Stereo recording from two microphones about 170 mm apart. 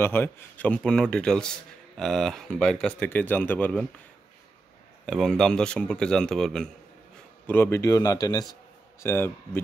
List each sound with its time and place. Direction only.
0.0 s a man's voice: 10° left (ahead or behind)
5.0 s a man's voice: 5° left (ahead or behind)